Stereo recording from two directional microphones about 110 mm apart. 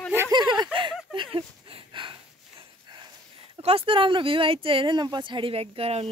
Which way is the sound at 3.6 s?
55° right (ahead or behind).